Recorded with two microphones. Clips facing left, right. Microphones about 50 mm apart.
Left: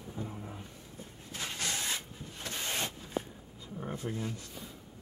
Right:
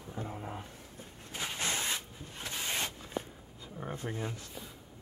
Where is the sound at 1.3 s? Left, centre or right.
Centre.